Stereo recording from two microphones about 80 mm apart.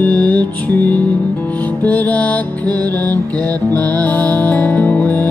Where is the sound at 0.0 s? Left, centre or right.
Centre.